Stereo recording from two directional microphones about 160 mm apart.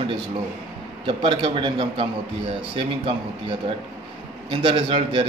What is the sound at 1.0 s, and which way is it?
A man's voice, 30° right (ahead or behind).